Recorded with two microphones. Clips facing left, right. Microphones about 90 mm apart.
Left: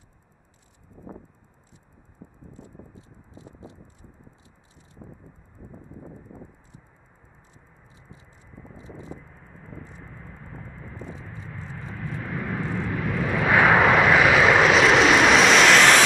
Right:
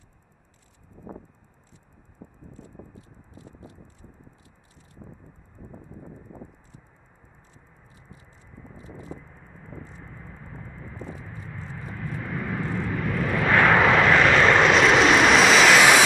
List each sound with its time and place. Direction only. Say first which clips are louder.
2.2 s clip-clop: right 1 dB; 10° right (ahead or behind)
2.5 s clip-clop: even; 20° left (ahead or behind)
8.1 s clip-clop: left 1 dB; 20° left (ahead or behind)
8.7 s a sound: even; 20° left (ahead or behind)
9.2 s vehicle: even; centre (ahead or behind)